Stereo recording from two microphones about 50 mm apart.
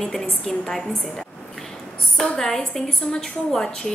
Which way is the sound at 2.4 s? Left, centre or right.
Centre.